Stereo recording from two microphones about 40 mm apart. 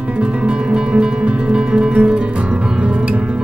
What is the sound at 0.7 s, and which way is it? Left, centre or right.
Music, right.